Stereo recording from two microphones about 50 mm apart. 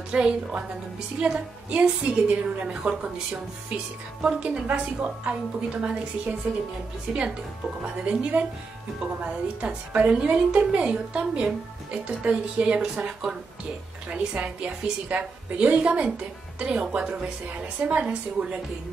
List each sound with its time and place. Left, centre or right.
0.1 s a woman's voice: centre
14.1 s a woman's voice: right